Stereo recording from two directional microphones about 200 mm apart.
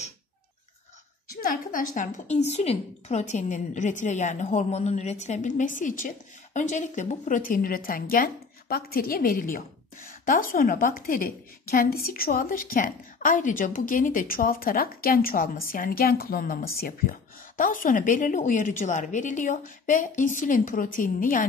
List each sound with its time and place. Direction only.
1.3 s a woman's voice: 45° left (ahead or behind)